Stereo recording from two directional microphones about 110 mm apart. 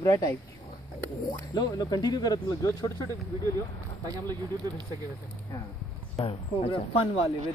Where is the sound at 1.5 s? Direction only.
35° left (ahead or behind).